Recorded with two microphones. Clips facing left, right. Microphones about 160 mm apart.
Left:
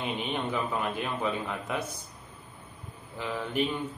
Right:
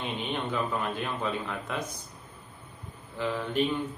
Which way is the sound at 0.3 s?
5° left (ahead or behind).